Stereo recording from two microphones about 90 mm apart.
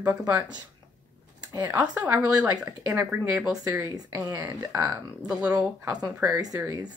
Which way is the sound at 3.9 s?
45° right (ahead or behind).